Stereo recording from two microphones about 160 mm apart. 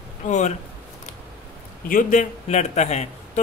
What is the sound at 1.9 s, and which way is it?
A man's voice, 55° left (ahead or behind).